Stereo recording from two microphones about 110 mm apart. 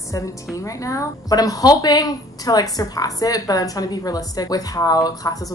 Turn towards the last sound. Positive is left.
turn(degrees=35)  # may be behind; listen again after turning